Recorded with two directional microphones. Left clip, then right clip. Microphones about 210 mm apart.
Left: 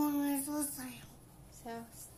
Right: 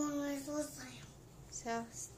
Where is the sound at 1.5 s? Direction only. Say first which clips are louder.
Right 5 dB; 10° right (ahead or behind).